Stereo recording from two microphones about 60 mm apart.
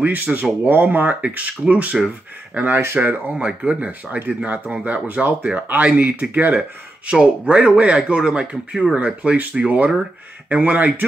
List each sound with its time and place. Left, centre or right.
0.0 s speech: right